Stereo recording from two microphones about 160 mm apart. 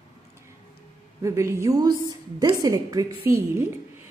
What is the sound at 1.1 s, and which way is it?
A woman's voice, 20° right (ahead or behind).